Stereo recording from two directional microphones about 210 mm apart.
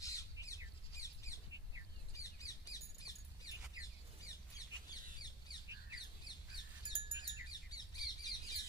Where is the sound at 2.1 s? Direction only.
15° left (ahead or behind).